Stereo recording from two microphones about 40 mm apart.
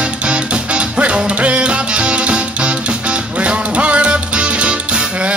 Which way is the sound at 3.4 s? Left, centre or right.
Right.